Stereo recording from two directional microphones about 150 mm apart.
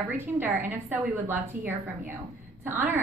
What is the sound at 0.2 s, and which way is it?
A woman's voice, 10° right (ahead or behind).